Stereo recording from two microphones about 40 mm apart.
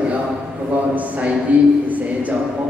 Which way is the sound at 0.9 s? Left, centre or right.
Right.